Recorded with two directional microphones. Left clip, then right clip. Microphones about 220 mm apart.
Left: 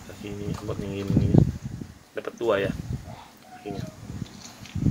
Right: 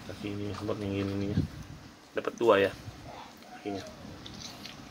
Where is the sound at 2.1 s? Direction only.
5° right (ahead or behind).